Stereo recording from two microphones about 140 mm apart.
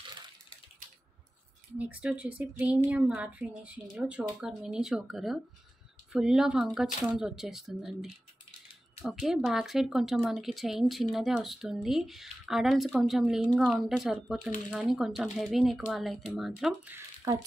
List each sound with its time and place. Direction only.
1.8 s speech: 10° right (ahead or behind)
16.9 s speech: 25° right (ahead or behind)